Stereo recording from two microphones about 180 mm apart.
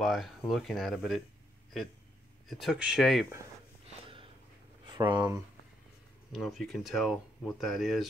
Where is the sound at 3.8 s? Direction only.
30° right (ahead or behind).